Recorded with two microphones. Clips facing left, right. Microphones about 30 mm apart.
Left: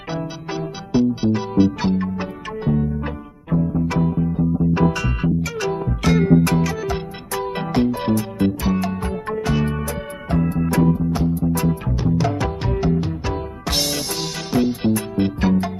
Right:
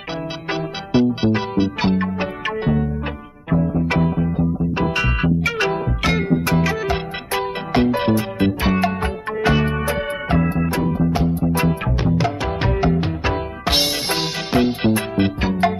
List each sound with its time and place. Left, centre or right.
0.5 s music: right
10.9 s music: right
11.1 s music: right
11.4 s music: right